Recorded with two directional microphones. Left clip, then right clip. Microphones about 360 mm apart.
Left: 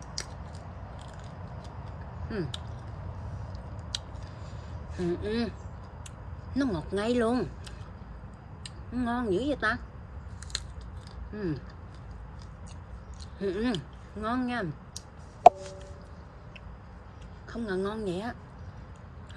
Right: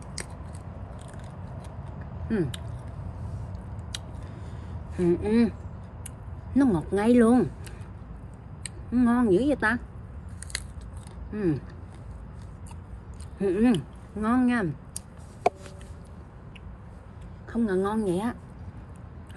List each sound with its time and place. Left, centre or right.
2.2 s speech: centre
3.9 s a sound: centre
4.9 s a woman's voice: centre
6.5 s a woman's voice: centre
8.6 s a woman's voice: centre
11.3 s a woman's voice: centre
13.4 s speech: centre
17.5 s a woman's voice: centre